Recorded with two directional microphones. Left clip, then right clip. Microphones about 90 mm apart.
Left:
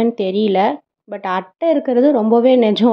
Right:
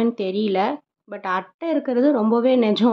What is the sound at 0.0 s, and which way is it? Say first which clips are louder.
Speech: left 6 dB; 35° left (ahead or behind).